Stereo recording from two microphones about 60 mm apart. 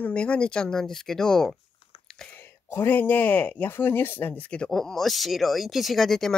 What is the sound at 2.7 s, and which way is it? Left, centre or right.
Speech, left.